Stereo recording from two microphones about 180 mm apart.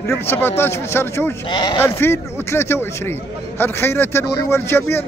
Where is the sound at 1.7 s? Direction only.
15° left (ahead or behind).